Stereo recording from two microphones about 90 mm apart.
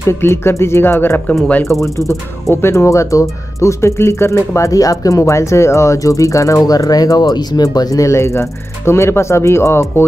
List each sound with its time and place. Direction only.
0.0 s speech: 25° left (ahead or behind)